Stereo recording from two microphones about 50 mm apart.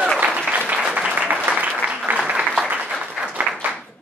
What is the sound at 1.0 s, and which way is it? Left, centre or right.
Applause, right.